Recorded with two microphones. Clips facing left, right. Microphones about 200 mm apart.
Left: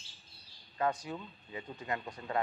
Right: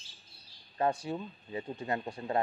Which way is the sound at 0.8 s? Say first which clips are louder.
Right 3 dB; 30° right (ahead or behind).